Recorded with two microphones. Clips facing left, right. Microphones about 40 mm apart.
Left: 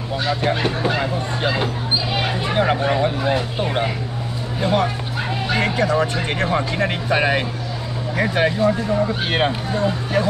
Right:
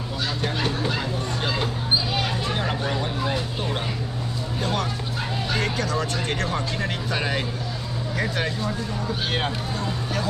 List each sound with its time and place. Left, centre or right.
0.3 s speech: left